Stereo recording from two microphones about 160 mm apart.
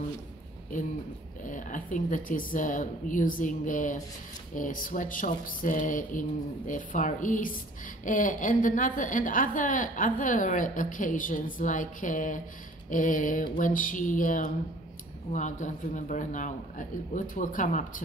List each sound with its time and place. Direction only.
1.4 s a woman's voice: 55° left (ahead or behind)